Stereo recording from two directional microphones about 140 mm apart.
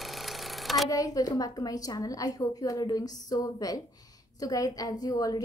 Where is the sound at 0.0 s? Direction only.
Centre (ahead or behind).